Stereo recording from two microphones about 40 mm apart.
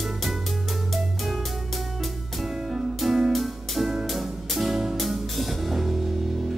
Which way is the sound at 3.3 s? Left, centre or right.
Centre.